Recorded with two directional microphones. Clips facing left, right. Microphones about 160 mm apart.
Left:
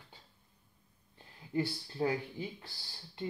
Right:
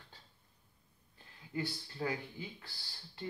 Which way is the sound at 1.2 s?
25° left (ahead or behind).